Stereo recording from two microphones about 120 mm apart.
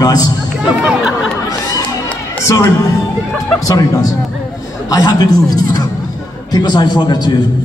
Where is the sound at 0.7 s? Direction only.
5° right (ahead or behind).